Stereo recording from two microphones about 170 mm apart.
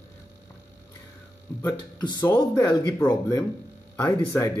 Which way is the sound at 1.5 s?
20° left (ahead or behind).